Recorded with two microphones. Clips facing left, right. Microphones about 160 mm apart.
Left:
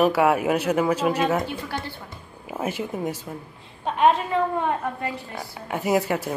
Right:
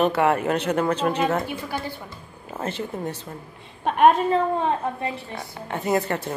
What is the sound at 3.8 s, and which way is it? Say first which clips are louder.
Speech: right 3 dB; 60° right (ahead or behind).